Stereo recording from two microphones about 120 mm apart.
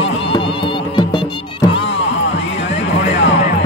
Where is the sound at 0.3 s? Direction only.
45° left (ahead or behind).